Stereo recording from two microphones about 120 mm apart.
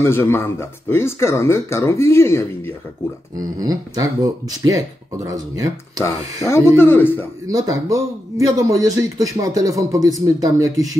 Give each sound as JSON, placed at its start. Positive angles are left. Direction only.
{"t": 0.0, "sound": "speech", "side_deg": 20}
{"t": 3.3, "sound": "speech", "side_deg": -30}
{"t": 6.0, "sound": "a man's voice", "side_deg": 25}
{"t": 7.4, "sound": "speech", "side_deg": -30}